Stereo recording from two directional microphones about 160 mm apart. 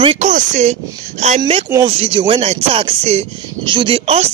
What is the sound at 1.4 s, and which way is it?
Speech, 35° right (ahead or behind).